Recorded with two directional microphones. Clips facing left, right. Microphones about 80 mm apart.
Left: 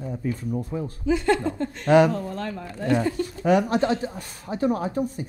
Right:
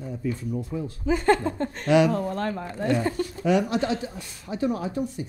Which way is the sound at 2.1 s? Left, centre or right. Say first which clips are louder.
Right 3 dB; right.